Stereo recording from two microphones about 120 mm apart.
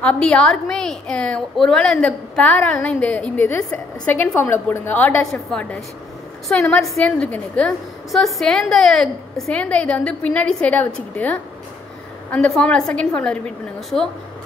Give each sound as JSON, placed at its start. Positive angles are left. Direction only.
{"t": 0.0, "sound": "a woman's voice", "side_deg": 10}
{"t": 8.1, "sound": "a woman's voice", "side_deg": 0}
{"t": 12.3, "sound": "a woman's voice", "side_deg": 5}